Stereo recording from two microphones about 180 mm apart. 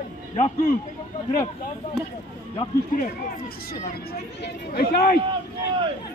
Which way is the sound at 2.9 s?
55° left (ahead or behind).